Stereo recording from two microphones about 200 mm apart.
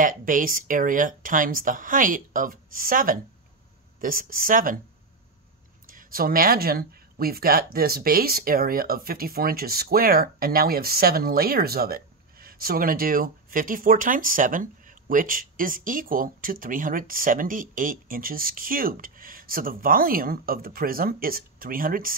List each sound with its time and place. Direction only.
0.0 s speech: 45° right (ahead or behind)
5.9 s speech: 45° right (ahead or behind)